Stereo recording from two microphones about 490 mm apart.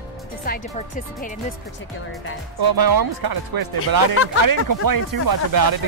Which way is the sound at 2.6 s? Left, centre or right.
Right.